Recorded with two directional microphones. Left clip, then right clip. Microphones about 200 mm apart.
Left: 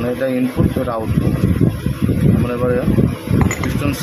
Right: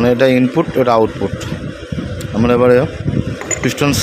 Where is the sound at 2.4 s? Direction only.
45° right (ahead or behind).